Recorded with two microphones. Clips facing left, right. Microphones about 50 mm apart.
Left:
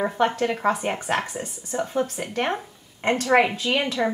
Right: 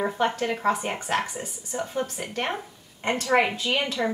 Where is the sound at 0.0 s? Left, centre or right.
Centre.